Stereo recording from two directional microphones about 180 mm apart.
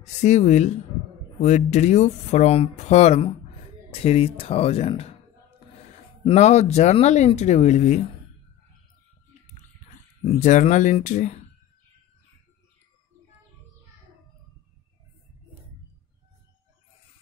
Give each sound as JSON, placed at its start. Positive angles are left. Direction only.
{"t": 0.0, "sound": "speech", "side_deg": 40}
{"t": 6.2, "sound": "speech", "side_deg": 40}
{"t": 10.3, "sound": "speech", "side_deg": 45}